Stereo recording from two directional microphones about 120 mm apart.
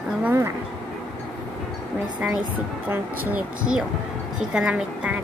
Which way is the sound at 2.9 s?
15° right (ahead or behind).